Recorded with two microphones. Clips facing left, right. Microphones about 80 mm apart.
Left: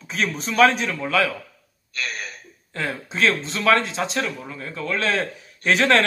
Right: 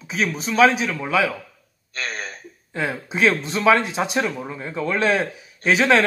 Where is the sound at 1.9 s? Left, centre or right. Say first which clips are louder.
Right 1 dB; right.